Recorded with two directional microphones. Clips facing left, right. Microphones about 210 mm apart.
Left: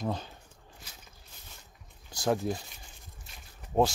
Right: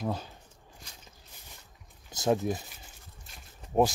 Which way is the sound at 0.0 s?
10° right (ahead or behind).